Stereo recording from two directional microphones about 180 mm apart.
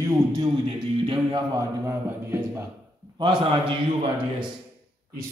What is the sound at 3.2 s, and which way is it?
Speech, 25° right (ahead or behind).